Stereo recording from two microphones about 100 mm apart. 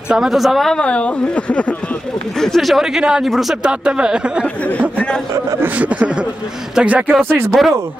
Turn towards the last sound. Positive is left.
turn(degrees=-25)  # may be behind; listen again after turning